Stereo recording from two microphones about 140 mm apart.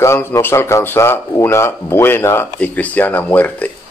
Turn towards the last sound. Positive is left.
turn(degrees=10)  # may be behind; listen again after turning